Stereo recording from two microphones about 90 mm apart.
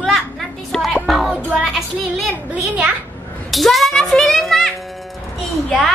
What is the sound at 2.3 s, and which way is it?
Speech, 15° right (ahead or behind).